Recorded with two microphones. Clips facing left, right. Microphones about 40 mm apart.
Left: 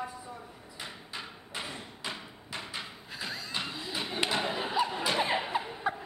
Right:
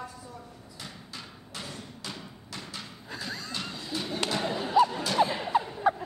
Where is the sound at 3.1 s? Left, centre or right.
Centre.